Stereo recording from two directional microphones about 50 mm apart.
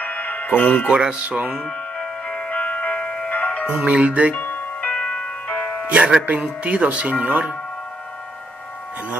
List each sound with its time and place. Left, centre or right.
0.0 s music: left
0.9 s music: centre
1.6 s music: centre
3.7 s speech: right
4.3 s music: left
4.9 s music: left
5.9 s speech: right